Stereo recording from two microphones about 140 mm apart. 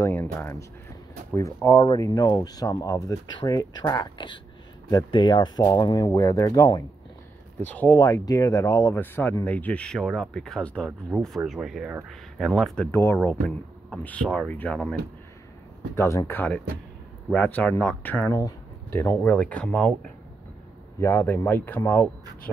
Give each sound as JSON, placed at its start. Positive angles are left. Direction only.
{"t": 0.0, "sound": "speech", "side_deg": 15}
{"t": 7.6, "sound": "speech", "side_deg": 15}
{"t": 8.0, "sound": "speech", "side_deg": 25}
{"t": 12.9, "sound": "speech", "side_deg": 15}
{"t": 15.9, "sound": "speech", "side_deg": 20}
{"t": 18.3, "sound": "speech", "side_deg": 20}
{"t": 21.0, "sound": "speech", "side_deg": 15}